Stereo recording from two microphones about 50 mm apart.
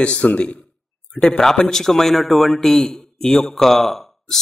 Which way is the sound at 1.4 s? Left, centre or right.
Centre.